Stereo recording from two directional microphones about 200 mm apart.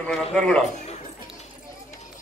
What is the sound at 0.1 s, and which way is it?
Speech, centre (ahead or behind).